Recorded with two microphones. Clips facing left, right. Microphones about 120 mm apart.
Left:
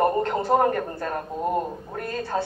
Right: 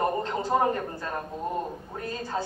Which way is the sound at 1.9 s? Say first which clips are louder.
Left 4 dB; 65° left (ahead or behind).